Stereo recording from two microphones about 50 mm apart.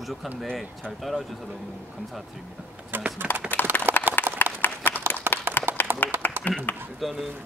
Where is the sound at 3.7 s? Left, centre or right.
Left.